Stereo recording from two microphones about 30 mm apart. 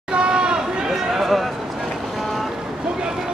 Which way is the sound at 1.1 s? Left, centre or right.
Centre.